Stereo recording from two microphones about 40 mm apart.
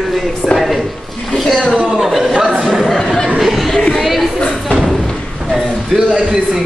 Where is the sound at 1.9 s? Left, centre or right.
Centre.